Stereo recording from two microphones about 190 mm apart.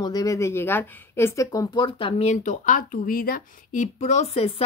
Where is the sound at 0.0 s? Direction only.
20° left (ahead or behind).